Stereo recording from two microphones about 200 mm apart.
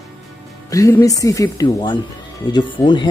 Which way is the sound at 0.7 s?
15° left (ahead or behind).